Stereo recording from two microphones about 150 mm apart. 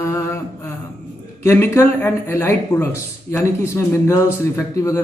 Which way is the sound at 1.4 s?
20° left (ahead or behind).